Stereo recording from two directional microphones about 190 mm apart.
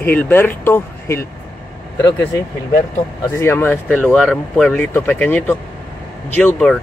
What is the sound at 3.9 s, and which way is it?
Speech, centre (ahead or behind).